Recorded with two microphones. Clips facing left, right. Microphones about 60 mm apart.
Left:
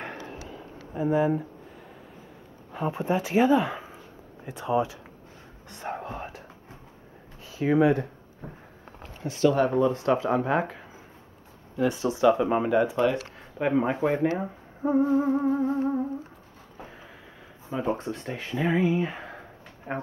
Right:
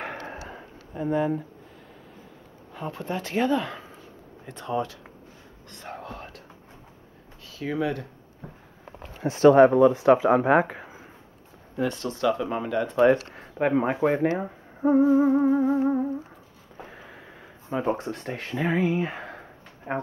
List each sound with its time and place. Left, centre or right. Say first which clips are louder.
0.9 s speech: left 1 dB; centre
2.7 s speech: left 5 dB; centre
5.7 s whispering: left 4 dB; centre
7.5 s speech: left 6 dB; left
9.2 s speech: right 7 dB; right
9.9 s speech: right 6 dB; right
11.8 s speech: left 4 dB; centre
13.6 s music: right 2 dB; centre
14.8 s humming: right 4 dB; centre
15.0 s music: right 4 dB; centre
16.7 s a sound: right 2 dB; centre
17.6 s speech: right 2 dB; centre
17.9 s speech: right 1 dB; centre
19.9 s music: right 3 dB; centre